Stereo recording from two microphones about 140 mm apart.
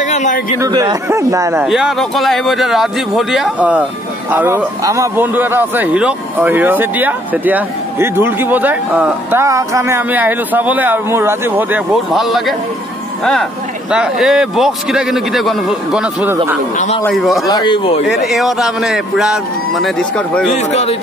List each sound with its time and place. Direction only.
0.1 s a sound: 60° left (ahead or behind)
0.7 s speech: 30° right (ahead or behind)
1.6 s a man's voice: 5° right (ahead or behind)
9.4 s speech: 20° right (ahead or behind)
12.1 s a man's voice: centre (ahead or behind)
16.7 s speech: 60° left (ahead or behind)
17.5 s speech: 30° left (ahead or behind)
18.1 s a man's voice: centre (ahead or behind)
20.4 s a man's voice: 55° left (ahead or behind)